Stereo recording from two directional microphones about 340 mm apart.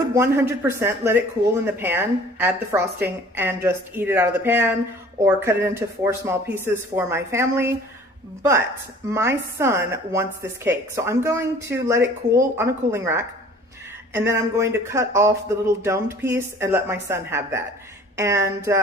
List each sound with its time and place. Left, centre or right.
0.1 s speech: centre